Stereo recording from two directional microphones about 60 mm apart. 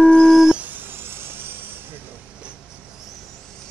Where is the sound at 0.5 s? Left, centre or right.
Right.